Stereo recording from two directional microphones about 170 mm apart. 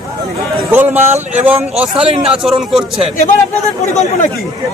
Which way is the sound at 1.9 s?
35° right (ahead or behind).